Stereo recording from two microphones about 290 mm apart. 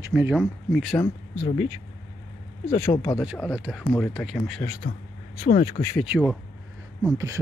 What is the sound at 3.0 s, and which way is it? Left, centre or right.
Speech, centre.